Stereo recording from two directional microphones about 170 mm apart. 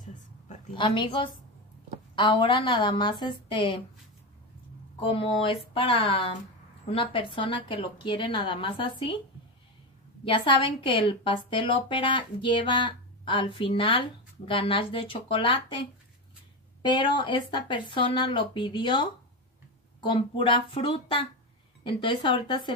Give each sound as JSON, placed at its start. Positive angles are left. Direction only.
{"t": 0.7, "sound": "a woman's voice", "side_deg": 30}
{"t": 5.1, "sound": "a woman's voice", "side_deg": 30}
{"t": 10.2, "sound": "a woman's voice", "side_deg": 30}
{"t": 16.8, "sound": "a woman's voice", "side_deg": 30}